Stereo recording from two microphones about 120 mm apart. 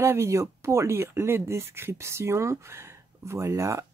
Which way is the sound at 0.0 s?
25° right (ahead or behind).